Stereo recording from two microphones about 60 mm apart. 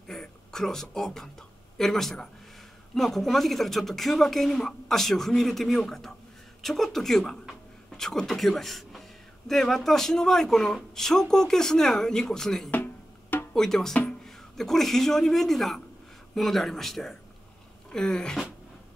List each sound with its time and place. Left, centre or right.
0.1 s speech: centre
12.7 s music: left
13.5 s speech: centre